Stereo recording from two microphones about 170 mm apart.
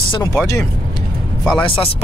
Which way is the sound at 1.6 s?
30° left (ahead or behind).